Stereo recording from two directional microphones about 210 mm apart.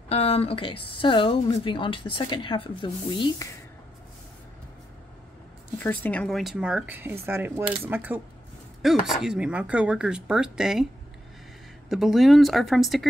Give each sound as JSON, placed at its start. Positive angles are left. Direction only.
{"t": 0.1, "sound": "a woman's voice", "side_deg": 30}
{"t": 5.8, "sound": "speech", "side_deg": 5}
{"t": 7.2, "sound": "mechanisms", "side_deg": -10}
{"t": 9.0, "sound": "speech", "side_deg": -5}
{"t": 11.9, "sound": "speech", "side_deg": 0}